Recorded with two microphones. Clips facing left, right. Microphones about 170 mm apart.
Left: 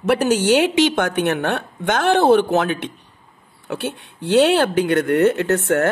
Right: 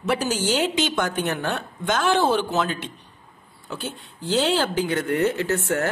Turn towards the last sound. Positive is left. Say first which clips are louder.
# left 6 dB
turn(degrees=65)  # may be behind; listen again after turning